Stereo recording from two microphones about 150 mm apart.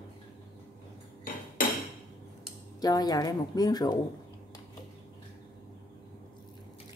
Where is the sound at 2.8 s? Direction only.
25° left (ahead or behind).